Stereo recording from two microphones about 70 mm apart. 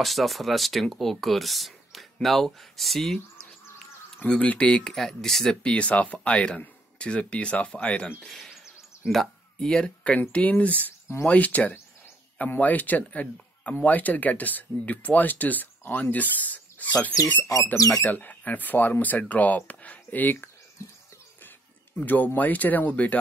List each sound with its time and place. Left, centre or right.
0.0 s speech: centre
4.3 s speech: centre
8.2 s speech: centre; by 20.4 s left
21.9 s speech: left